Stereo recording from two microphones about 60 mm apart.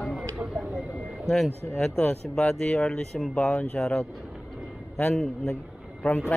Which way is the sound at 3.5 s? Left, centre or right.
Left.